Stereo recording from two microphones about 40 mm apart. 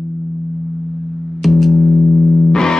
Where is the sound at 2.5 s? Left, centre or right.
Centre.